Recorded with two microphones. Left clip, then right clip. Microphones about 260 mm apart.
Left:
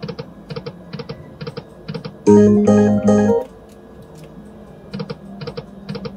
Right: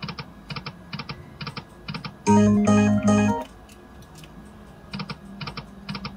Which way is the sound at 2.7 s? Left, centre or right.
Right.